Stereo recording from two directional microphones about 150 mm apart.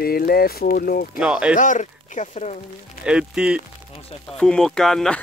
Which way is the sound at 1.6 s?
55° left (ahead or behind).